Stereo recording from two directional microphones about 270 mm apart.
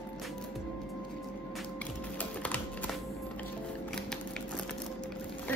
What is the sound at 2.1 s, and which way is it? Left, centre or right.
Music, centre.